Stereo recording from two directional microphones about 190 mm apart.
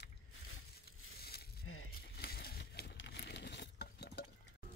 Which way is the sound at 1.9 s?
55° left (ahead or behind).